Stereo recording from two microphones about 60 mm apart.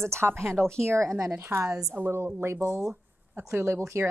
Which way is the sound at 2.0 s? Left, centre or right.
Right.